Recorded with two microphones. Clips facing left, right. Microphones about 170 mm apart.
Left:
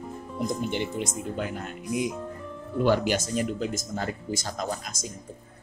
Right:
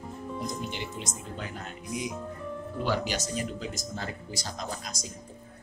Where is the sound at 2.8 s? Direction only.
50° left (ahead or behind).